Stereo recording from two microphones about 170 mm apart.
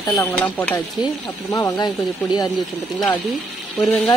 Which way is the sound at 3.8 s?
5° left (ahead or behind).